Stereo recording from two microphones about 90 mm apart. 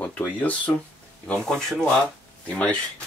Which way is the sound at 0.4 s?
15° left (ahead or behind).